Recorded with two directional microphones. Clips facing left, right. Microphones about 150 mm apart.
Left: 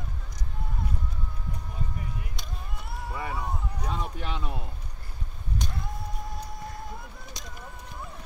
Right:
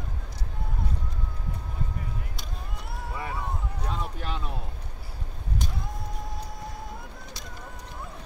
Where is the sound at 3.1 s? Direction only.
Centre (ahead or behind).